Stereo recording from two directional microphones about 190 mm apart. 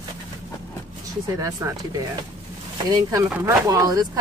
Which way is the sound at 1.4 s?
15° right (ahead or behind).